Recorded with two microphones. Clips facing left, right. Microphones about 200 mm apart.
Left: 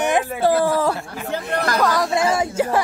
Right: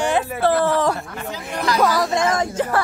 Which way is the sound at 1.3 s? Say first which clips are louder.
Left 2 dB; 60° left (ahead or behind).